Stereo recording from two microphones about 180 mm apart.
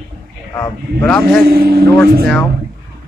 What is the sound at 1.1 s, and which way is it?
Speech, 5° left (ahead or behind).